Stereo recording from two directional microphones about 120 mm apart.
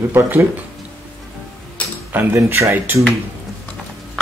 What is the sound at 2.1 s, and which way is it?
Speech, 20° right (ahead or behind).